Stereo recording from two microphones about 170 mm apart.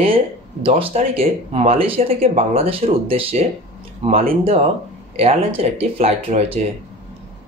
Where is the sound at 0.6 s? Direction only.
35° right (ahead or behind).